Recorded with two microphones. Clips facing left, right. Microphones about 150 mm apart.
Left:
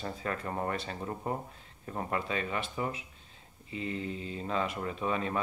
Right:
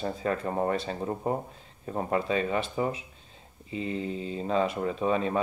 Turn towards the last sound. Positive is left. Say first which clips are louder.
# right 6 dB
turn(degrees=-30)  # may be behind; listen again after turning